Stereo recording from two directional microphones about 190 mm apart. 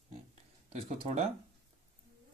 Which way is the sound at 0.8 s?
35° right (ahead or behind).